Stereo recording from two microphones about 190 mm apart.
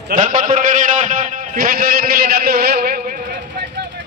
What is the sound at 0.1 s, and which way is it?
A man's voice, 45° right (ahead or behind).